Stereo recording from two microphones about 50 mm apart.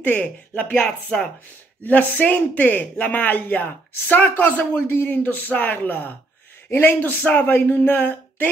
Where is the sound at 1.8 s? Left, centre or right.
Left.